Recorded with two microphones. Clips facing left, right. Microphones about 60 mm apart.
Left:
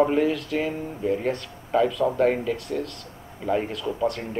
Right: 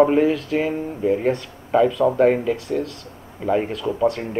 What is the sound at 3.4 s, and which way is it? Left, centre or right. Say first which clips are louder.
Speech: right 4 dB; centre.